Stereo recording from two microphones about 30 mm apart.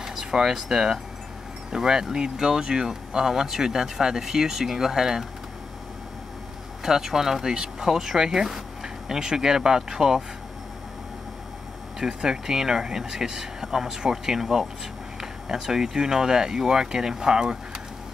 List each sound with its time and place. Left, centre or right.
0.0 s speech: centre
3.3 s speech: centre
6.8 s speech: centre
12.0 s speech: right